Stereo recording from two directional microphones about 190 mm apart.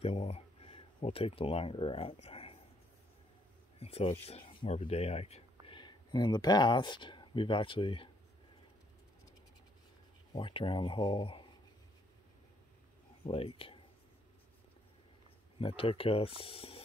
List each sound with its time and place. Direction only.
0.0 s speech: 35° left (ahead or behind)
3.8 s speech: 30° left (ahead or behind)
10.3 s speech: 25° left (ahead or behind)
13.2 s speech: 30° left (ahead or behind)
15.6 s speech: 30° left (ahead or behind)